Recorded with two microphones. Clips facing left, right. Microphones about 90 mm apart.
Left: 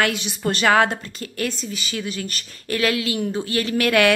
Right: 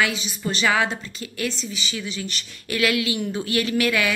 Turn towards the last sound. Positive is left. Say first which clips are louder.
# left 1 dB
turn(degrees=35)  # may be behind; listen again after turning